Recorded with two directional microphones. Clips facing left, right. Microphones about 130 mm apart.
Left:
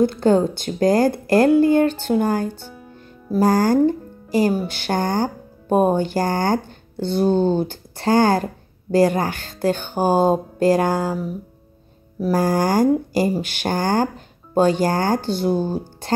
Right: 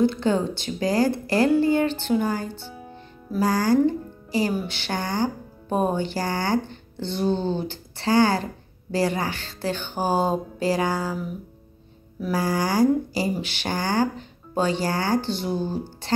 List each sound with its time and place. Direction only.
0.0 s speech: 45° left (ahead or behind)